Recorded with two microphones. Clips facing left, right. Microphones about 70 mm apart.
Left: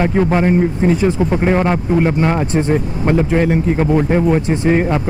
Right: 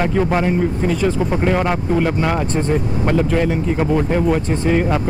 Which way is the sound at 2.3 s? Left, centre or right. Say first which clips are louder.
Left 3 dB; centre.